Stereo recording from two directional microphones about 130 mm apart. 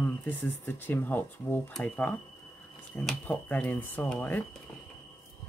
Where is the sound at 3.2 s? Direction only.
10° left (ahead or behind).